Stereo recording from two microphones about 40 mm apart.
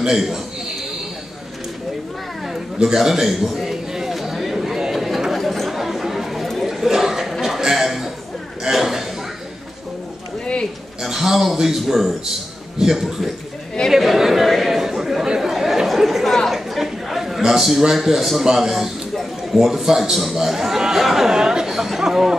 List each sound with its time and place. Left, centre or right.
0.1 s a man's voice: centre
2.4 s a sound: centre
5.3 s chatter: centre
7.4 s a sound: centre
8.6 s chuckle: centre
10.4 s a sound: left
11.0 s a man's voice: centre
13.8 s chatter: centre
15.5 s chatter: centre
16.3 s chatter: centre
16.5 s a sound: centre
18.4 s a man's voice: centre
21.3 s chatter: centre